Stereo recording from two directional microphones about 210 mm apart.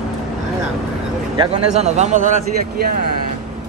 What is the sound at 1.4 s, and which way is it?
Speech, 30° right (ahead or behind).